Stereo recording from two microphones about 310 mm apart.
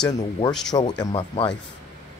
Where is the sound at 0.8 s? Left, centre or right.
Centre.